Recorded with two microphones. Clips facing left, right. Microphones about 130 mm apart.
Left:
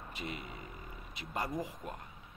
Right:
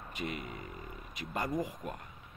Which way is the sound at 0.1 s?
30° left (ahead or behind).